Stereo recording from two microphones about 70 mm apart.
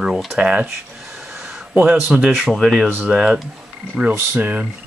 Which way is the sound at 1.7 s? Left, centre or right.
Centre.